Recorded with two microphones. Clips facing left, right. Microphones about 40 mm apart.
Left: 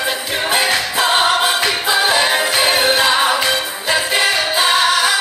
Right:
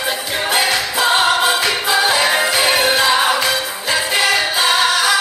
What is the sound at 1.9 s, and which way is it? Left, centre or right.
Music, left.